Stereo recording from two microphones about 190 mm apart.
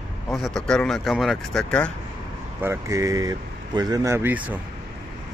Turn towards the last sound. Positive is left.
turn(degrees=-10)  # may be behind; listen again after turning